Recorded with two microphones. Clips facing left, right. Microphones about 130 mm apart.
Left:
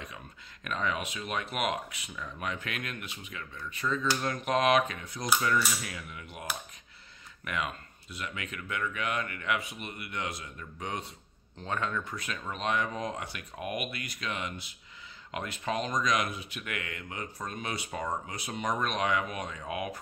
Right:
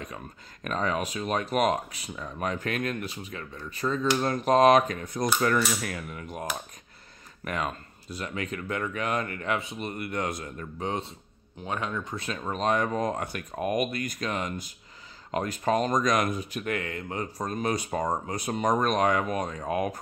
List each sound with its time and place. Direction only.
0.7 s speech: 40° right (ahead or behind)
7.4 s speech: 40° right (ahead or behind)
9.6 s speech: 25° right (ahead or behind)
9.8 s speech: 45° right (ahead or behind)
10.8 s speech: 30° right (ahead or behind)
11.5 s speech: 15° right (ahead or behind); by 20.0 s 40° right (ahead or behind)